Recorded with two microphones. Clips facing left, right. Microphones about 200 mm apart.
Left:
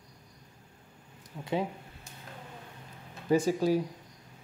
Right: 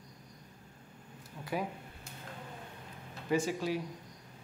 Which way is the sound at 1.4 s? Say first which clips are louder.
Left 5 dB; 25° left (ahead or behind).